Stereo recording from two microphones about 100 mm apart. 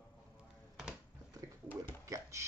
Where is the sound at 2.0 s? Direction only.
30° right (ahead or behind).